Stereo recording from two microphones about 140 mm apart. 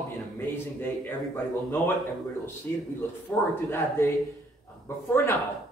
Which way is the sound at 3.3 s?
20° left (ahead or behind).